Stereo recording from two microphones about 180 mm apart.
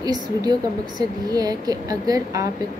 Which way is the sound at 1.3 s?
20° right (ahead or behind).